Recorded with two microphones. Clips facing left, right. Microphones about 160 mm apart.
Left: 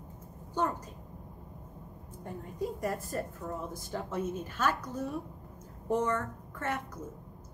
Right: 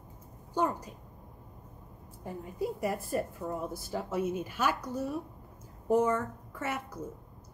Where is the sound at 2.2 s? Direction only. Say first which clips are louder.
Right 2 dB; 5° right (ahead or behind).